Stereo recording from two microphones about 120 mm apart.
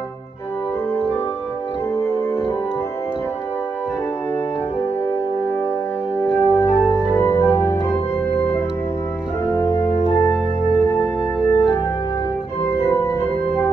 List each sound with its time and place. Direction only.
2.0 s organ: 20° left (ahead or behind)
6.3 s music: 20° left (ahead or behind)
7.1 s organ: 20° left (ahead or behind)
10.7 s music: 20° left (ahead or behind)
12.6 s organ: 20° left (ahead or behind)